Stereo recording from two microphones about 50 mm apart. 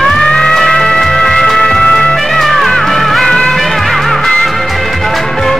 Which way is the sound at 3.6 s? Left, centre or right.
Centre.